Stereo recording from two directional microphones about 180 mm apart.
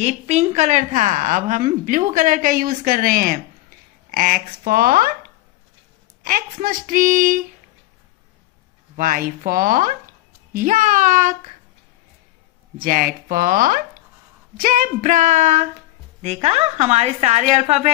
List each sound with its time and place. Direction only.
0.0 s a woman's voice: 35° right (ahead or behind); by 5.1 s 55° right (ahead or behind)
6.2 s a woman's voice: 50° right (ahead or behind)
8.9 s a woman's voice: 50° right (ahead or behind)
12.8 s a woman's voice: 50° right (ahead or behind)